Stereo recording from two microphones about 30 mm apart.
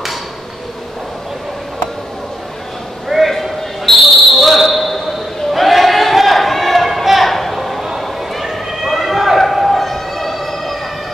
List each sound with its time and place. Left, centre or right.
3.1 s clip-clop: centre
3.8 s basketball bounce: centre
5.5 s battle cry: centre
8.0 s run: centre